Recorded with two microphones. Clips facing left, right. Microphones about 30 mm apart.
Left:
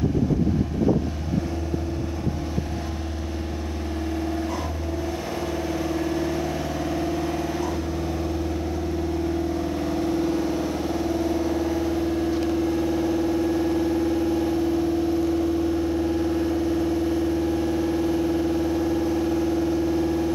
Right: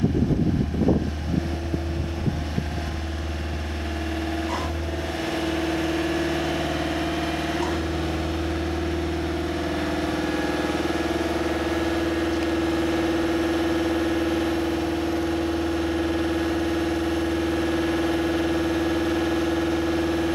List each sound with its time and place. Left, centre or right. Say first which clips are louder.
5.3 s vehicle: right 4 dB; right